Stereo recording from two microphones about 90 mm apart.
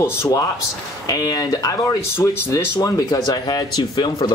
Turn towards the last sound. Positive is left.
turn(degrees=50)  # may be behind; listen again after turning